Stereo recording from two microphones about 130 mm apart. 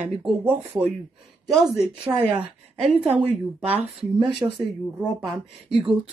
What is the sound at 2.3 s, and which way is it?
Speech, 40° right (ahead or behind).